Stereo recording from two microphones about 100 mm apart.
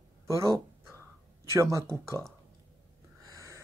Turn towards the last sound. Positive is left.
turn(degrees=-30)  # may be behind; listen again after turning